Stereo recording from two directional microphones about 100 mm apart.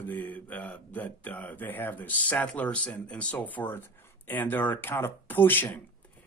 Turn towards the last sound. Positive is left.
turn(degrees=20)  # may be behind; listen again after turning